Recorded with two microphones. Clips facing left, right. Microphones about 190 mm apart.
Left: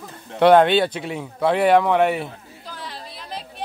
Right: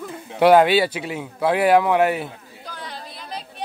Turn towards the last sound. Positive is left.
turn(degrees=0)  # may be behind; listen again after turning